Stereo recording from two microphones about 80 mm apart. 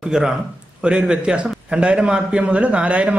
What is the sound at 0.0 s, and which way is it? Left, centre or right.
A man's voice, centre.